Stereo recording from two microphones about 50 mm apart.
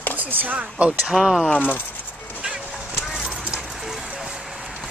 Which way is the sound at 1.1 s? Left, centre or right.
Centre.